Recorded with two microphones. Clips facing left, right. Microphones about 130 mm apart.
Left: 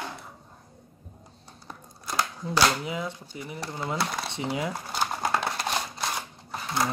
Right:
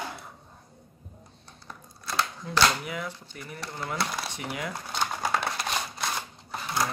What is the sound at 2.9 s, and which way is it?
Speech, 20° left (ahead or behind).